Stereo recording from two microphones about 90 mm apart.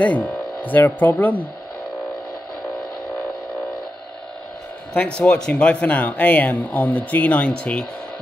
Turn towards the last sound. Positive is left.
turn(degrees=10)  # may be behind; listen again after turning